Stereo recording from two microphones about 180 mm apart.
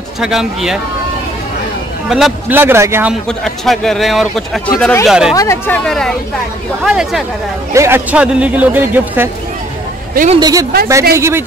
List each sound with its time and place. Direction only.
0.2 s speech: centre (ahead or behind)
2.0 s speech: centre (ahead or behind)
2.6 s a man's voice: 15° right (ahead or behind)
3.3 s speech: centre (ahead or behind)
5.3 s speech: 20° left (ahead or behind)
5.9 s speech: 5° left (ahead or behind)
7.7 s a man's voice: 15° right (ahead or behind)
10.1 s a man's voice: 40° right (ahead or behind)
10.4 s a man's voice: 20° right (ahead or behind)